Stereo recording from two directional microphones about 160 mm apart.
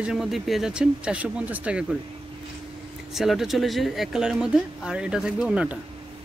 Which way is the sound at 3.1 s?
Centre (ahead or behind).